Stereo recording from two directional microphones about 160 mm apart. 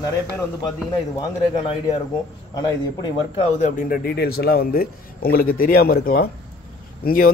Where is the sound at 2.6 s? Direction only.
25° left (ahead or behind).